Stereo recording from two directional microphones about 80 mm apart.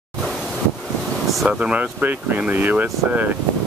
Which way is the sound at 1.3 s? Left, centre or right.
Centre.